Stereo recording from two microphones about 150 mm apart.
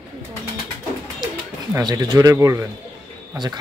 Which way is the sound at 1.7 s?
25° right (ahead or behind).